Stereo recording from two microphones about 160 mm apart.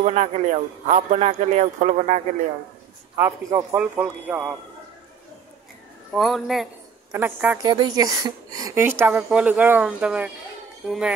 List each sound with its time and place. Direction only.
0.0 s a man's voice: 45° right (ahead or behind)
3.2 s a man's voice: 20° right (ahead or behind)
3.7 s speech: 10° right (ahead or behind)
6.1 s speech: centre (ahead or behind)
7.1 s speech: 10° right (ahead or behind)
7.5 s speech: 25° right (ahead or behind); by 11.1 s 5° right (ahead or behind)